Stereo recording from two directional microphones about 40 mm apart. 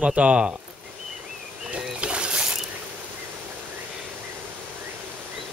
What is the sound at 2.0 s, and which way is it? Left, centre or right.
Boat, right.